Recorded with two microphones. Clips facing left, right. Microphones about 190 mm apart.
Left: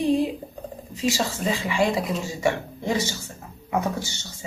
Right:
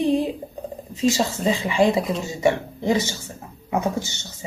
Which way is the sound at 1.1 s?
20° right (ahead or behind).